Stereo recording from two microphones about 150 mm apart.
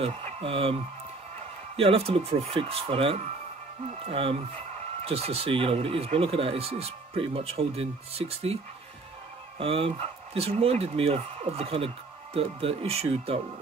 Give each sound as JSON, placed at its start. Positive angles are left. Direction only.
{"t": 0.0, "sound": "speech", "side_deg": -40}
{"t": 9.6, "sound": "speech", "side_deg": -40}